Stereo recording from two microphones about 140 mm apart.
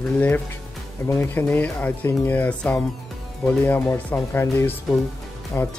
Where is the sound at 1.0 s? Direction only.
15° left (ahead or behind).